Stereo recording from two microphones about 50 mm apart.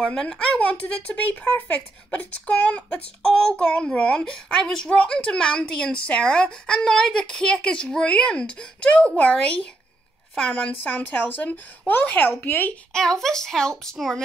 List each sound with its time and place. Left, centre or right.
0.0 s speech: centre
0.6 s speech: left
3.2 s speech: centre
8.8 s speech: left
10.5 s speech: left
12.9 s speech: centre